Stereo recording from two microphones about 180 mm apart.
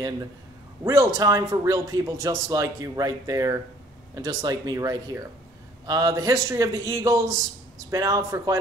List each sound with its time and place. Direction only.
0.8 s speech: 15° right (ahead or behind)